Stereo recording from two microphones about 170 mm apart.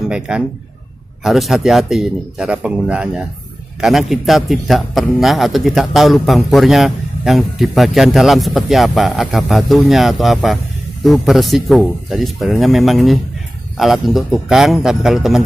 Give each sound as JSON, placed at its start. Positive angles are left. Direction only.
{"t": 0.3, "sound": "a man's voice", "side_deg": -5}